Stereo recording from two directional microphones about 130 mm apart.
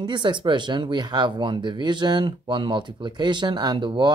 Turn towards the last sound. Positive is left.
turn(degrees=-35)  # may be behind; listen again after turning